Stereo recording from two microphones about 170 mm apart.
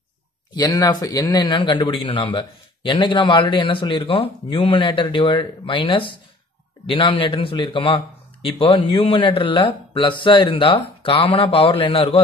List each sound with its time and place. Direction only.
0.5 s speech: 25° left (ahead or behind)